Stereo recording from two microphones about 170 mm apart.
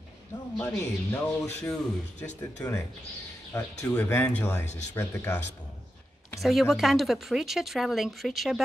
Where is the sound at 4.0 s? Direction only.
10° left (ahead or behind).